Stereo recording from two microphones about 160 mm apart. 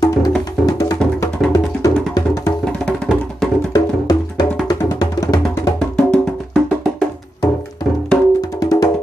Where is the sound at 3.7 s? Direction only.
25° left (ahead or behind).